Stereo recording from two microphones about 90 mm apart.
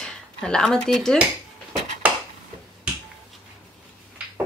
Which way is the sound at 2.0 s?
15° right (ahead or behind).